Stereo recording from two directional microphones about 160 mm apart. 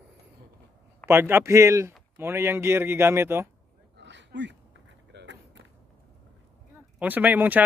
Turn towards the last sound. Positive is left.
turn(degrees=-10)  # may be behind; listen again after turning